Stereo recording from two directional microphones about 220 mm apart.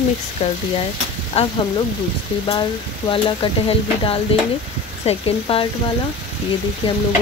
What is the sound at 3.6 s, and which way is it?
Speech, 25° left (ahead or behind).